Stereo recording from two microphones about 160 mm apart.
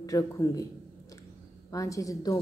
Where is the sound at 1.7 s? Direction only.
20° left (ahead or behind).